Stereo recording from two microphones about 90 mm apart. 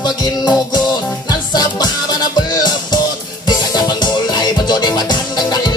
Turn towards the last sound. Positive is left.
turn(degrees=50)  # may be behind; listen again after turning